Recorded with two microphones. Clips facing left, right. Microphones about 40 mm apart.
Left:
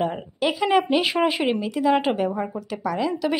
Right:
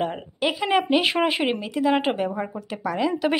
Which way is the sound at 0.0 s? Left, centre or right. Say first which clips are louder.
Left 1 dB; centre.